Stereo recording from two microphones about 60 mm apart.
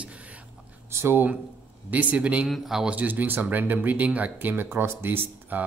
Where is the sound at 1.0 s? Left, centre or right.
Right.